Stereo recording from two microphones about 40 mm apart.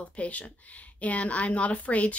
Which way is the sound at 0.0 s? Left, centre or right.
Left.